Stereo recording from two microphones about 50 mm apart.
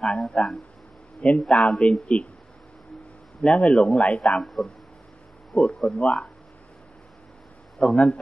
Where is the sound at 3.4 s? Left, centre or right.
Centre.